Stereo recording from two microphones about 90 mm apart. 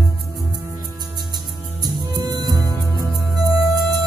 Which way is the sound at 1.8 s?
45° right (ahead or behind).